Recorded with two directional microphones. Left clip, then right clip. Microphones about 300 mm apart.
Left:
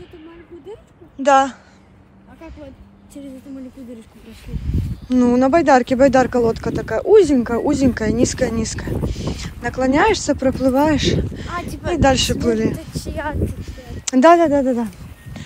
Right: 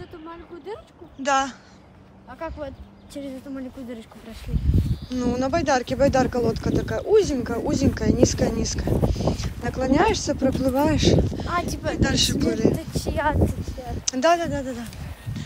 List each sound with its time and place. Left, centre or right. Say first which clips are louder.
1.2 s speech: left 9 dB; centre
5.1 s speech: left 9 dB; centre
11.7 s speech: left 8 dB; centre
12.4 s speech: left 4 dB; left
12.7 s speech: right 1 dB; centre
13.6 s a sound: right 2 dB; left